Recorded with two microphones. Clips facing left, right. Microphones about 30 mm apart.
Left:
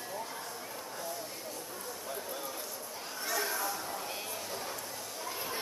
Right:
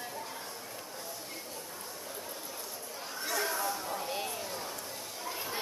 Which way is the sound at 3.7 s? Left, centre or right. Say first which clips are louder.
Right 2 dB; centre.